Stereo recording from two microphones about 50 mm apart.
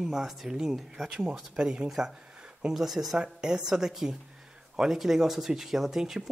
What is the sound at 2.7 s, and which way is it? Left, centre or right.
Speech, centre.